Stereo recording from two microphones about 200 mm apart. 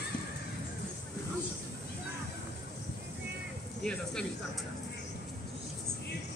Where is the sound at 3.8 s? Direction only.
5° left (ahead or behind).